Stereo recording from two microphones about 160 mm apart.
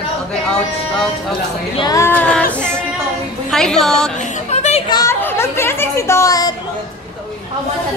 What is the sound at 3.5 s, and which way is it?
Speech, 5° left (ahead or behind).